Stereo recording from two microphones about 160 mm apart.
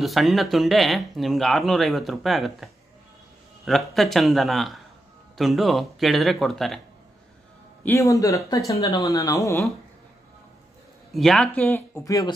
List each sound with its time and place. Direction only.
0.0 s speech: centre (ahead or behind)
7.8 s speech: 20° left (ahead or behind)
11.1 s speech: centre (ahead or behind)
11.7 s speech: 15° left (ahead or behind)